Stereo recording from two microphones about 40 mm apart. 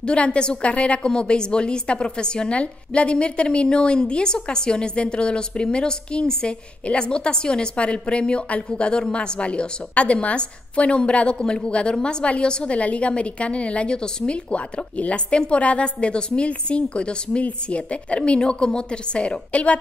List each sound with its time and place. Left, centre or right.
0.0 s a woman's voice: left